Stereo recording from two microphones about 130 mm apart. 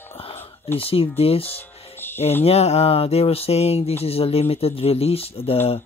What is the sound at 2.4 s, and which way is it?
Speech, 55° left (ahead or behind).